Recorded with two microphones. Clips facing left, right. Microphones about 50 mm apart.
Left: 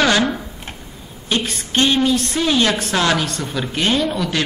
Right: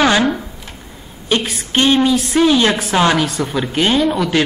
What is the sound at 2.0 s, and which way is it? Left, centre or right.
Speech, centre.